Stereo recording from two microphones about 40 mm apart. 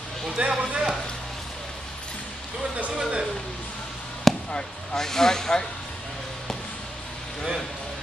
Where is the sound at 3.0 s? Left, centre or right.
Centre.